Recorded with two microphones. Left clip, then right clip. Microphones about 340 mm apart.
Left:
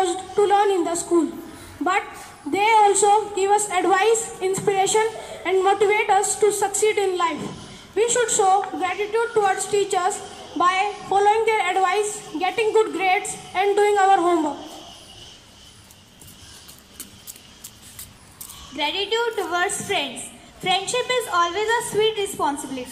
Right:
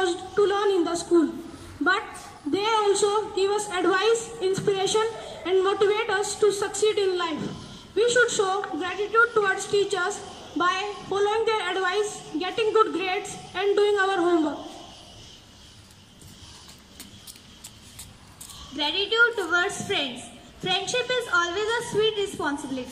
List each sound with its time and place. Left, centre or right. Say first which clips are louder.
0.0 s a sound: left 3 dB; centre
2.5 s a woman's voice: left 6 dB; centre
18.8 s a woman's voice: right 1 dB; centre